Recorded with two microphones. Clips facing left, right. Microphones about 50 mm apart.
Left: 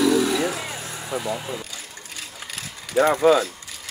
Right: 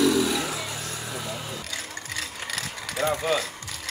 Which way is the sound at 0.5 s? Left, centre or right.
Left.